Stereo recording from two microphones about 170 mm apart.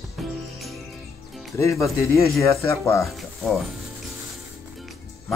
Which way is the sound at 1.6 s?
15° left (ahead or behind).